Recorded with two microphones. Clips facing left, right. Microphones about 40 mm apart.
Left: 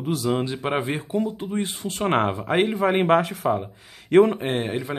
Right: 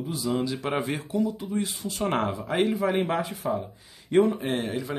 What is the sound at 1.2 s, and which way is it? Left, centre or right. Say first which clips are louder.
A man's voice: even; left.